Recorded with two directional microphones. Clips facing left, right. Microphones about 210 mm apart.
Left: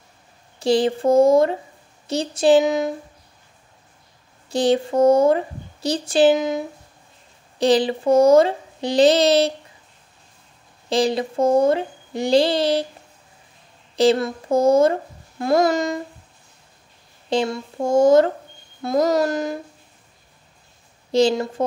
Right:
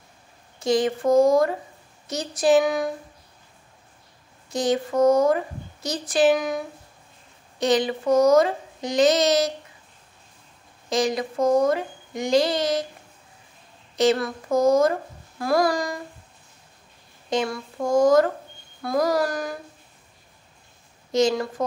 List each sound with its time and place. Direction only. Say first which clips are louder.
0.6 s a woman's voice: left 3 dB; 30° left (ahead or behind)
4.5 s a woman's voice: left 4 dB; 30° left (ahead or behind)
10.9 s speech: left 3 dB; 30° left (ahead or behind)
13.9 s a woman's voice: left 3 dB; 30° left (ahead or behind)
17.3 s a woman's voice: left 3 dB; 30° left (ahead or behind)
21.1 s a woman's voice: left 3 dB; 30° left (ahead or behind)